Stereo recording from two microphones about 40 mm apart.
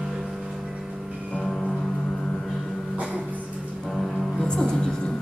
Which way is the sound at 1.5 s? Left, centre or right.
Centre.